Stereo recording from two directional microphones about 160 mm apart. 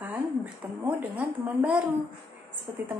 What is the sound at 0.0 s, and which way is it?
Speech, 10° right (ahead or behind).